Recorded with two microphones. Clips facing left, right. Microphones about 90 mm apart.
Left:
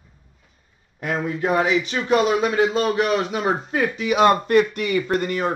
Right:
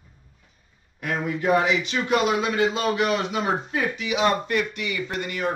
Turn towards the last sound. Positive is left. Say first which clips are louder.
# left 5 dB
turn(degrees=40)  # may be behind; listen again after turning